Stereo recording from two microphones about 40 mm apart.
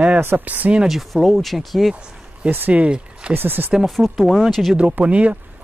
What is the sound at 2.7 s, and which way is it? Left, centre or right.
Speech, right.